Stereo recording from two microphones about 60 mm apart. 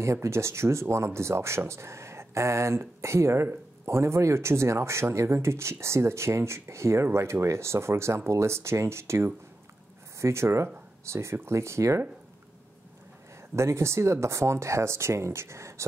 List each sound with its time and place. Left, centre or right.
0.0 s speech: right
13.6 s speech: right